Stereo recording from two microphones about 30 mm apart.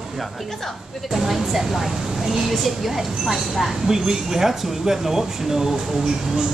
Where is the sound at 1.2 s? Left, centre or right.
Centre.